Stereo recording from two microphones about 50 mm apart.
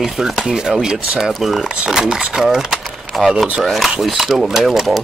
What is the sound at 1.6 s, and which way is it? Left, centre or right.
Speech, centre.